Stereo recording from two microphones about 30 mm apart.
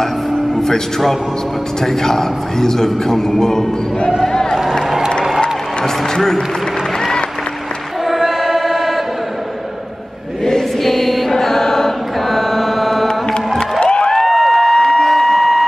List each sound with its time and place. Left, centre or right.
0.6 s a man's voice: centre
4.3 s a sound: centre
5.4 s music: left
8.0 s choir: centre
10.8 s mantra: centre
12.3 s music: centre
13.6 s music: left
14.2 s a sound: centre
14.6 s a sound: centre